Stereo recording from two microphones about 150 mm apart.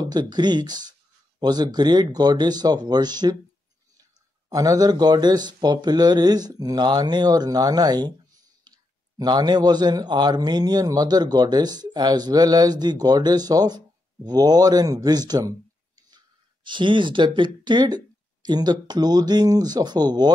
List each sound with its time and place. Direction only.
0.0 s a man's voice: 30° right (ahead or behind)
4.5 s a man's voice: 25° right (ahead or behind)
8.7 s clicking: 30° right (ahead or behind)
9.2 s a man's voice: 30° right (ahead or behind)
16.6 s a man's voice: 30° right (ahead or behind)